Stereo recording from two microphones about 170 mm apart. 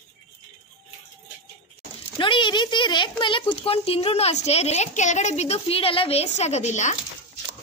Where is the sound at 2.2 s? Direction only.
30° left (ahead or behind).